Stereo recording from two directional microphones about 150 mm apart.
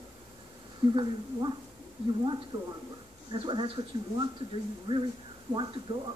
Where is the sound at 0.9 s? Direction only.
30° right (ahead or behind).